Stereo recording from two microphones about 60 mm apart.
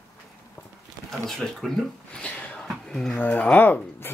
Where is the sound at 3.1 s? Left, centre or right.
Left.